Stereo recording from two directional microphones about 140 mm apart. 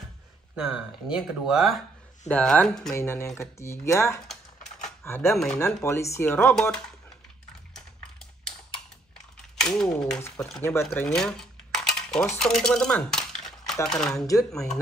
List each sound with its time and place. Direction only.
0.6 s speech: 5° right (ahead or behind)
2.2 s speech: 10° left (ahead or behind)
2.9 s speech: 20° left (ahead or behind)
5.3 s speech: 5° left (ahead or behind)
5.8 s speech: 20° left (ahead or behind)
9.7 s speech: 5° left (ahead or behind)
10.6 s speech: 20° left (ahead or behind)
10.9 s cutlery: 5° left (ahead or behind)
12.4 s dishes: 5° left (ahead or behind)
13.8 s speech: 5° left (ahead or behind)